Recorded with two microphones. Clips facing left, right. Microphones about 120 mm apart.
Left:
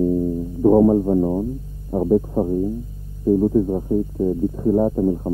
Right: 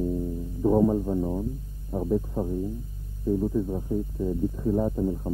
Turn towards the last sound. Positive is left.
turn(degrees=30)  # may be behind; listen again after turning